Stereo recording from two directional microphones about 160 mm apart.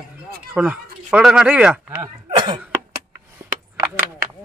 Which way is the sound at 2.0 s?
30° right (ahead or behind).